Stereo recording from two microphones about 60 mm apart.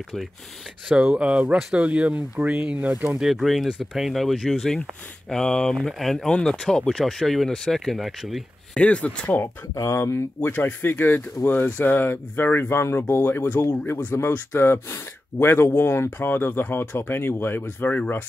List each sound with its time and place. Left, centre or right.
1.1 s speech: right
3.2 s speech: centre
8.7 s speech: centre
9.8 s speech: left
10.4 s speech: left